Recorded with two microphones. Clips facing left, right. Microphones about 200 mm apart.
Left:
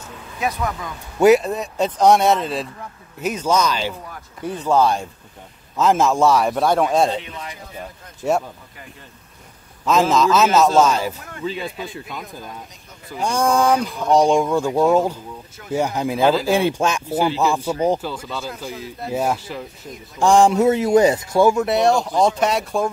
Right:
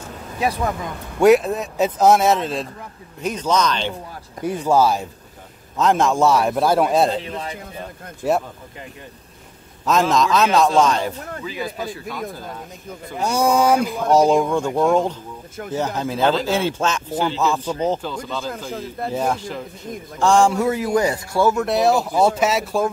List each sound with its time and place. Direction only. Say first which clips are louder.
0.4 s speech: right 2 dB; 30° right (ahead or behind)
1.2 s speech: even; centre (ahead or behind)
4.5 s speech: right 1 dB; 10° right (ahead or behind)
7.2 s speech: right 3 dB; 35° right (ahead or behind)
8.2 s speech: even; centre (ahead or behind)
9.8 s speech: left 1 dB; centre (ahead or behind)
11.4 s a man's voice: left 3 dB; 25° left (ahead or behind)
13.2 s speech: right 1 dB; 5° right (ahead or behind); by 18.5 s 10° left (ahead or behind)
18.7 s speech: right 3 dB; 50° right (ahead or behind)
19.0 s a man's voice: left 1 dB; 10° left (ahead or behind)
21.6 s speech: even; centre (ahead or behind)